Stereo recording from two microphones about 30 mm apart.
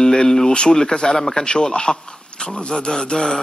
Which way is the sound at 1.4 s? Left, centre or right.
Left.